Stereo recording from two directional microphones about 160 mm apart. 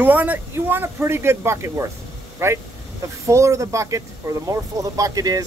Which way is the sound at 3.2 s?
20° right (ahead or behind).